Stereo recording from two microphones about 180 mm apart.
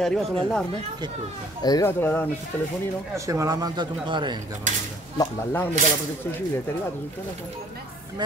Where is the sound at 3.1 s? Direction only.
15° right (ahead or behind).